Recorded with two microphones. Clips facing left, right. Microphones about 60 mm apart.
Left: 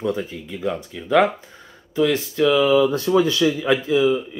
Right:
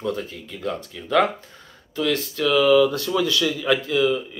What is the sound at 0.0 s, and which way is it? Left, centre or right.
Speech, left.